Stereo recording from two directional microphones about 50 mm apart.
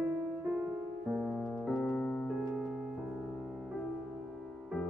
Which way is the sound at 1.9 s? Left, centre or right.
Left.